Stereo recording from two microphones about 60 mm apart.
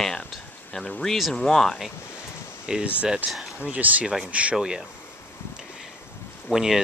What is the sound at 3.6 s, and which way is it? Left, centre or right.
Speech, right.